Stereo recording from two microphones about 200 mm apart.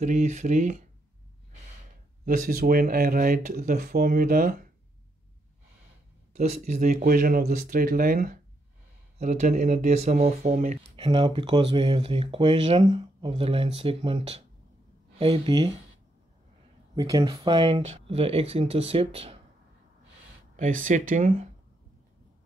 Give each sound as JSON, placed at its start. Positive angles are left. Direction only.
{"t": 0.0, "sound": "speech", "side_deg": -35}
{"t": 2.2, "sound": "speech", "side_deg": -45}
{"t": 6.3, "sound": "speech", "side_deg": -35}
{"t": 11.0, "sound": "speech", "side_deg": -25}
{"t": 16.9, "sound": "speech", "side_deg": -20}
{"t": 20.8, "sound": "speech", "side_deg": -40}